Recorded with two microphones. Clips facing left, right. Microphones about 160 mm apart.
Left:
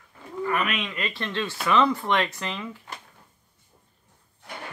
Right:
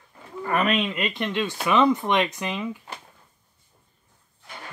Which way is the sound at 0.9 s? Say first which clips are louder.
Right 4 dB; 20° right (ahead or behind).